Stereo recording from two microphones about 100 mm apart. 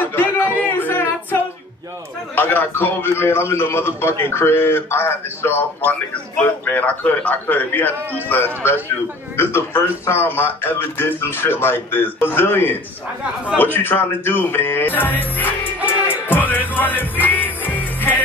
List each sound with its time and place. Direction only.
0.0 s a sound: 20° left (ahead or behind)
0.6 s music: 20° left (ahead or behind)
2.3 s a man's voice: 20° left (ahead or behind)
16.1 s music: 20° left (ahead or behind)